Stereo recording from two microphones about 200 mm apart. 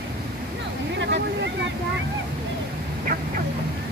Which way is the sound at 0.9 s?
60° right (ahead or behind).